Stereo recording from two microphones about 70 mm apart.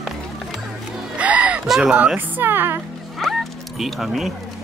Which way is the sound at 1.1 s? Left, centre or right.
Centre.